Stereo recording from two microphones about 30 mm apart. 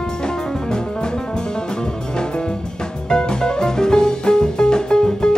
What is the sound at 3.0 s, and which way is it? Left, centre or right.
Music, left.